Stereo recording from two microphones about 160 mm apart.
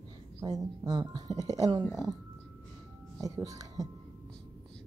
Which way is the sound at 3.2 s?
20° right (ahead or behind).